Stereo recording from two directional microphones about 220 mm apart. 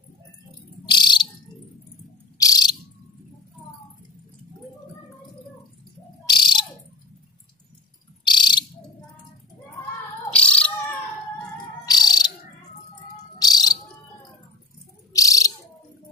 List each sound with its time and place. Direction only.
0.8 s bird: 20° left (ahead or behind)
2.3 s cricket: 15° left (ahead or behind)
6.2 s bird: 20° left (ahead or behind)
8.2 s bird: 20° left (ahead or behind)
10.3 s bird: 5° left (ahead or behind)
11.8 s cricket: 20° left (ahead or behind)
13.4 s bird: 15° left (ahead or behind)
15.1 s bird: 15° left (ahead or behind)